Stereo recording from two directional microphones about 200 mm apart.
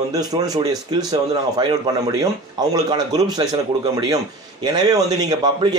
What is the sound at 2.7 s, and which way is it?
Speech, 20° right (ahead or behind).